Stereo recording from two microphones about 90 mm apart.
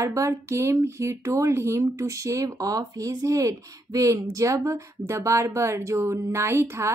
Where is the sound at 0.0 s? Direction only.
35° right (ahead or behind).